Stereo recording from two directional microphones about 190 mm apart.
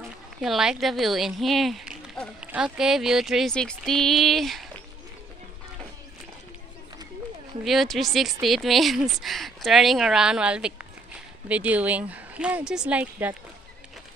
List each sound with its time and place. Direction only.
0.4 s speech: centre (ahead or behind)
7.6 s speech: centre (ahead or behind)